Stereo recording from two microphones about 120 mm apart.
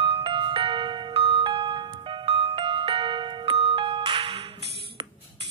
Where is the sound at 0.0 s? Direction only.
50° right (ahead or behind).